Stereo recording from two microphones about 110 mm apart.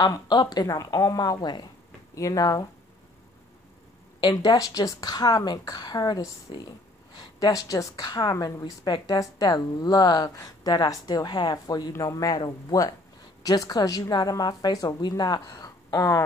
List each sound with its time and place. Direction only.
0.0 s a woman's voice: 40° left (ahead or behind)
4.2 s a woman's voice: 35° left (ahead or behind)